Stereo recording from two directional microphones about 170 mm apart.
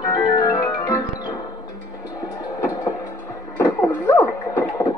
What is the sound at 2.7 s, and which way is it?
Music, 20° left (ahead or behind).